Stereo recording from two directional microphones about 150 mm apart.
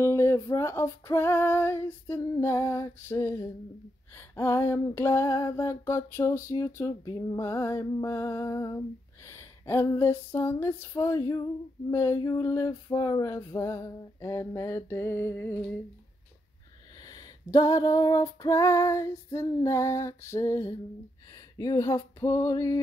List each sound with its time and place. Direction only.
0.0 s female singing: 20° left (ahead or behind)
17.0 s female singing: 25° left (ahead or behind)